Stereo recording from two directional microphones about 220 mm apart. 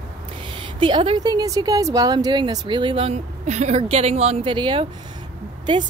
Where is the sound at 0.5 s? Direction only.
25° right (ahead or behind).